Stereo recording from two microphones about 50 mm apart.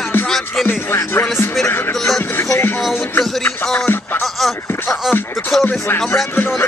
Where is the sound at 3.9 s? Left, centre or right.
Left.